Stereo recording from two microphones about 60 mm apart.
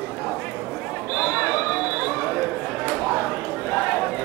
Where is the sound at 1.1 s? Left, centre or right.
Left.